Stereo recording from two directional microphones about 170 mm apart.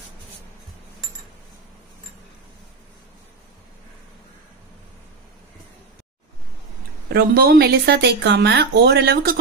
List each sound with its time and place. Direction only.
7.1 s speech: 65° right (ahead or behind)